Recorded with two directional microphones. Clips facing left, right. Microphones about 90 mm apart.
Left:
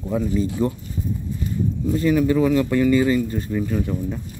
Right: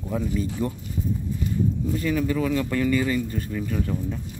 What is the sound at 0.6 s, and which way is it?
Speech, 30° left (ahead or behind).